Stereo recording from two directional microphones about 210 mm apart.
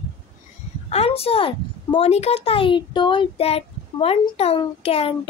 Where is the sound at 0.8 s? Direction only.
30° left (ahead or behind).